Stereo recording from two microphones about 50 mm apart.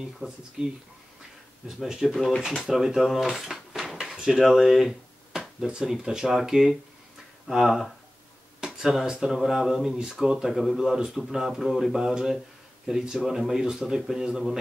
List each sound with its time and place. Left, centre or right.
0.2 s speech: centre
2.0 s speech: centre
3.9 s a sound: centre
5.7 s speech: centre
8.5 s a sound: centre
9.0 s speech: centre